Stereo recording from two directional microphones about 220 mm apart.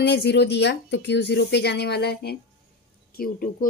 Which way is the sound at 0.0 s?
50° left (ahead or behind).